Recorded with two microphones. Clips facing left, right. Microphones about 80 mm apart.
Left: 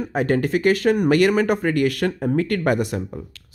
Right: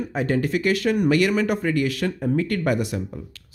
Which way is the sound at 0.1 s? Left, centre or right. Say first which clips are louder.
Left 3 dB; left.